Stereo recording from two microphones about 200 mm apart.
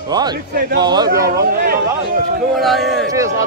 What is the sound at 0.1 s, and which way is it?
Speech, 20° right (ahead or behind).